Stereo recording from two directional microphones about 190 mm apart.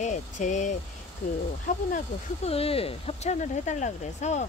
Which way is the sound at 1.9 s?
30° left (ahead or behind).